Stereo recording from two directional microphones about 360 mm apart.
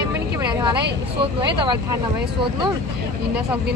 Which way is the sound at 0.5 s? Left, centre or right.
Centre.